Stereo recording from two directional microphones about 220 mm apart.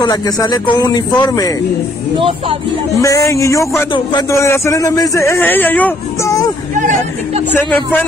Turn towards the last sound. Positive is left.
turn(degrees=-35)  # may be behind; listen again after turning